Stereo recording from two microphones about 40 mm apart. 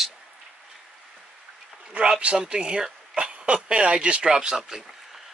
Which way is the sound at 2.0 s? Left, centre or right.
Right.